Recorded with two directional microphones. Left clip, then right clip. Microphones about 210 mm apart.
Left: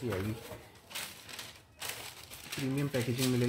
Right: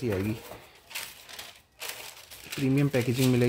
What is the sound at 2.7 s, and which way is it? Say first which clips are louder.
Speech: right 8 dB; 55° right (ahead or behind).